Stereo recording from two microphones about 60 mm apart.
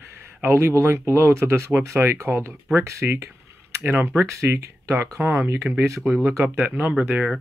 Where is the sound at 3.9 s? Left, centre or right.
Right.